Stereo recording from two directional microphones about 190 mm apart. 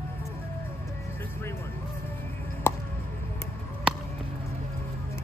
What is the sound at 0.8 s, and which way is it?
Music, 15° left (ahead or behind).